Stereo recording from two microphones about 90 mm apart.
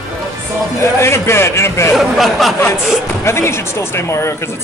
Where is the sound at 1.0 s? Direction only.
30° left (ahead or behind).